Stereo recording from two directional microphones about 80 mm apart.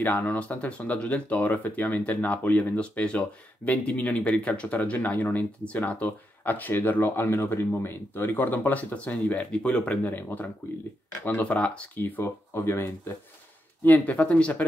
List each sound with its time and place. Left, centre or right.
0.0 s speech: left
12.2 s speech: left
13.8 s speech: left